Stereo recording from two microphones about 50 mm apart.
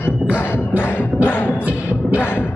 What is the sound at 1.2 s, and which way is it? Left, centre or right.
Music, left.